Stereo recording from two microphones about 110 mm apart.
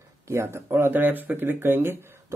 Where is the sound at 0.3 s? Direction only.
20° right (ahead or behind).